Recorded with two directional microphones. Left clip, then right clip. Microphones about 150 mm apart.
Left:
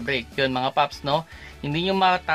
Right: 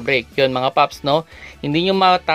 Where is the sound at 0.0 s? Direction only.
40° right (ahead or behind).